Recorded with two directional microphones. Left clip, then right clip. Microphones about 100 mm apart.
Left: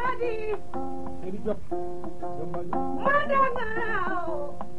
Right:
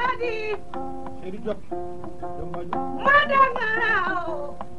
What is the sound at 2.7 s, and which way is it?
Music, 35° right (ahead or behind).